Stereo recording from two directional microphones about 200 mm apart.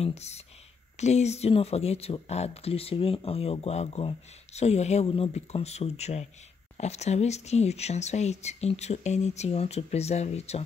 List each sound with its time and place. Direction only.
0.0 s speech: 35° left (ahead or behind)